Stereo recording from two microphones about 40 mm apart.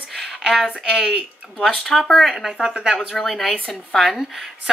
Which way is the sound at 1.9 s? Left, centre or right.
Centre.